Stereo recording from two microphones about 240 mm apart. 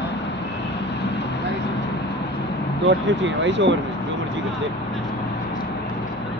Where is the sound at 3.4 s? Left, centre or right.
Right.